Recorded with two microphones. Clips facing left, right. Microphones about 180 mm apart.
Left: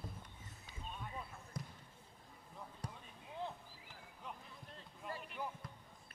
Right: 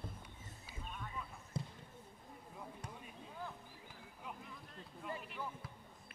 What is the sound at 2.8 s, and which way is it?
Basketball bounce, 35° left (ahead or behind).